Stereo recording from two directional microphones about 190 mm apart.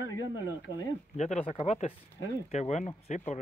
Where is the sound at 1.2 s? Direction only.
35° left (ahead or behind).